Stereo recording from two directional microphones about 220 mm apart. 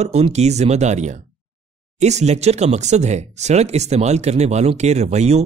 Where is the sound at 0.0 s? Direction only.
30° right (ahead or behind).